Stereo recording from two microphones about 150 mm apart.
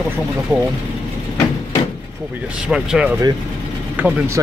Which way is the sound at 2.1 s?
10° right (ahead or behind).